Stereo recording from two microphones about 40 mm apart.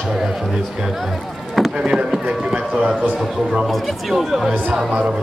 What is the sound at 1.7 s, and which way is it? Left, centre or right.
A man's voice, right.